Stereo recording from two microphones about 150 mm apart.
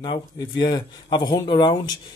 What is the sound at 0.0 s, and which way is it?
Speech, 30° left (ahead or behind).